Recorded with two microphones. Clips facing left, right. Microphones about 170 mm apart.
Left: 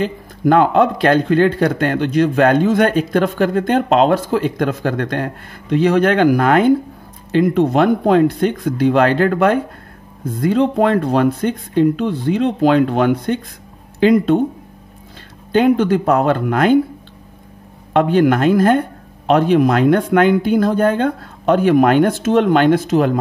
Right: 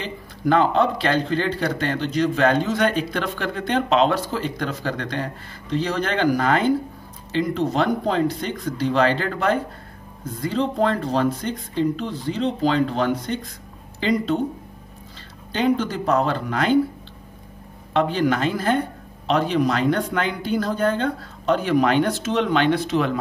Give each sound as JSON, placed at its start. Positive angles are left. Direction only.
{"t": 0.0, "sound": "speech", "side_deg": 50}
{"t": 15.5, "sound": "speech", "side_deg": 55}
{"t": 17.9, "sound": "speech", "side_deg": 55}